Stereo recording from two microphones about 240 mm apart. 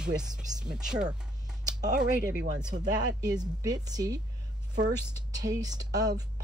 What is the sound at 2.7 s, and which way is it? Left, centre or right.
Speech, centre.